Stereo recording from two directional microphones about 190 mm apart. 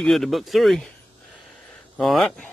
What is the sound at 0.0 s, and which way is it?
Speech, centre (ahead or behind).